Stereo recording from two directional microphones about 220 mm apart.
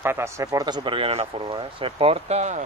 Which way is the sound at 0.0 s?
10° right (ahead or behind).